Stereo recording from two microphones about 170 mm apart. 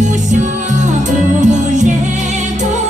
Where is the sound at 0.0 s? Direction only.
45° right (ahead or behind).